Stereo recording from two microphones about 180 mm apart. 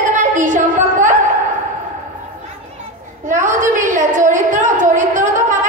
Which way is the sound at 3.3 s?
45° right (ahead or behind).